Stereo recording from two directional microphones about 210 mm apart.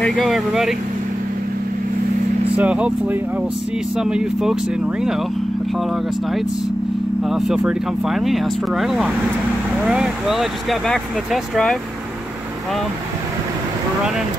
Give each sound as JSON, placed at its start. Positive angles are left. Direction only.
{"t": 0.0, "sound": "speech", "side_deg": 0}
{"t": 2.5, "sound": "speech", "side_deg": -5}